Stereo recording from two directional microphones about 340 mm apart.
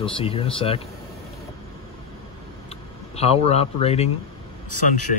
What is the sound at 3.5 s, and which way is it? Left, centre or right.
Speech, centre.